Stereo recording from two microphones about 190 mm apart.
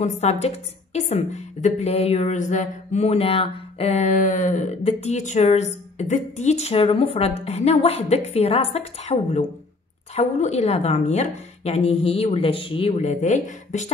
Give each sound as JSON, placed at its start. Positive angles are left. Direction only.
{"t": 0.0, "sound": "a woman's voice", "side_deg": 35}